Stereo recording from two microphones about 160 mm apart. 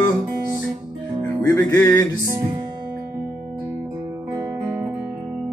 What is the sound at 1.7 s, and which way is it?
Music, 20° left (ahead or behind).